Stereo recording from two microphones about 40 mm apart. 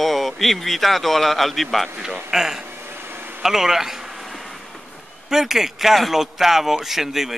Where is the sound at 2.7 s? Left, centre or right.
Right.